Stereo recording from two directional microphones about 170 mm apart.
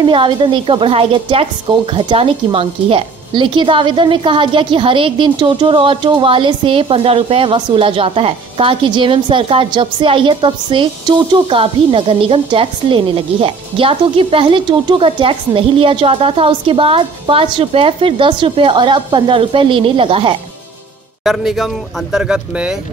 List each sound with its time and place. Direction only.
0.0 s a woman's voice: 30° right (ahead or behind)
21.2 s speech: centre (ahead or behind)